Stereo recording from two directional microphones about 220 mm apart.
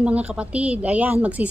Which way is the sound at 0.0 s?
5° right (ahead or behind).